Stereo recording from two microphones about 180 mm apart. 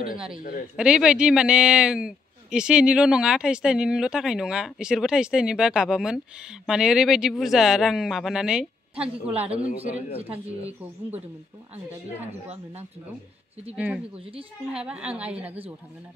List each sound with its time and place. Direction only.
0.4 s speech: 50° left (ahead or behind)
0.7 s a man's voice: 5° right (ahead or behind)
8.9 s a woman's voice: 35° right (ahead or behind)
10.2 s speech: 10° right (ahead or behind)
13.7 s speech: 10° right (ahead or behind)